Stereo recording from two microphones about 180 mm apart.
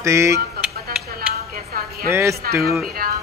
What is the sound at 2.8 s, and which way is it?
Music, 55° right (ahead or behind).